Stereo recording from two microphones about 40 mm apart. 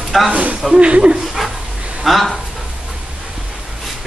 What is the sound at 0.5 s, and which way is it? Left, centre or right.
Speech, right.